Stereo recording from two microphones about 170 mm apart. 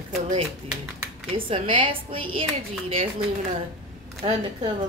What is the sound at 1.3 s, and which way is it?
Speech, 30° right (ahead or behind).